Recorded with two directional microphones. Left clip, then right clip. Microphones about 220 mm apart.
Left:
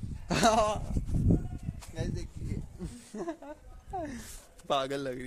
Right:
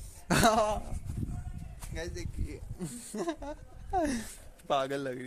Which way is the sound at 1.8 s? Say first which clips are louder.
Right 1 dB; centre (ahead or behind).